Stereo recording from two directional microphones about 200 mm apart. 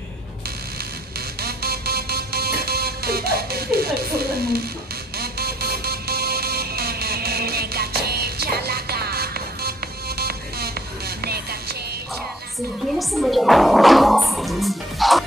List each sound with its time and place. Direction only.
1.4 s music: 50° right (ahead or behind)
13.1 s music: centre (ahead or behind)